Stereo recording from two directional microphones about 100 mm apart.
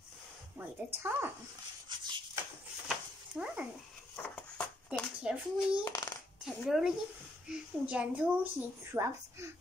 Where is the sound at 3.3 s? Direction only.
15° right (ahead or behind).